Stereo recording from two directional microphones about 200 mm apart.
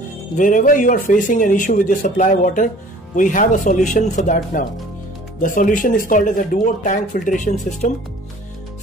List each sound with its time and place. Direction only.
0.4 s speech: 40° left (ahead or behind)